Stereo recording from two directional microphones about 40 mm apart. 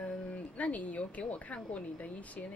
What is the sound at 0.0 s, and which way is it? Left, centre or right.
A woman's voice, left.